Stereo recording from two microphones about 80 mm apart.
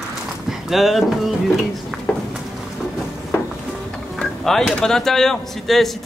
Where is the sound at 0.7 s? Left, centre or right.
Centre.